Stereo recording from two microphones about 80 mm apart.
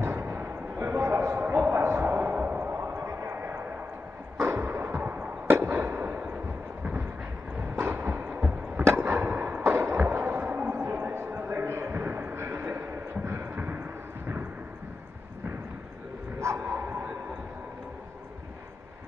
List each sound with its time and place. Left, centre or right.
0.0 s basketball bounce: right
1.5 s throbbing: right
3.0 s a sound: right
4.4 s fireworks: right
7.5 s a sound: right
16.5 s bow-wow: right